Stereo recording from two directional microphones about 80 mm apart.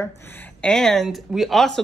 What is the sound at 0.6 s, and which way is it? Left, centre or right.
Speech, centre.